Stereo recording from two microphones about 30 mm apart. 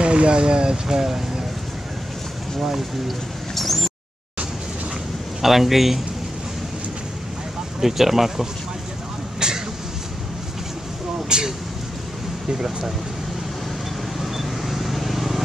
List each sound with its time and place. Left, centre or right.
0.0 s speech: right
0.8 s speech: centre
3.5 s a sound: centre
5.4 s speech: centre
7.8 s speech: centre
9.4 s a sound: right
11.2 s speech: right
12.5 s speech: centre
14.2 s vehicle: centre